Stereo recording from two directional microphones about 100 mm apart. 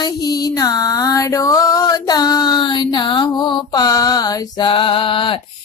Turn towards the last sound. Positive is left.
turn(degrees=60)  # may be behind; listen again after turning